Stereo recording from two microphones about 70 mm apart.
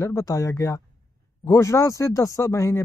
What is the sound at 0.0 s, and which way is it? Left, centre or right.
Speech, left.